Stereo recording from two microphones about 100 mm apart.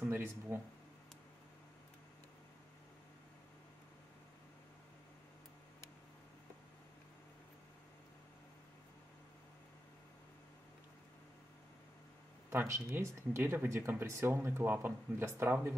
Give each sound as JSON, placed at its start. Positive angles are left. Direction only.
{"t": 0.0, "sound": "speech", "side_deg": -20}
{"t": 12.4, "sound": "speech", "side_deg": -25}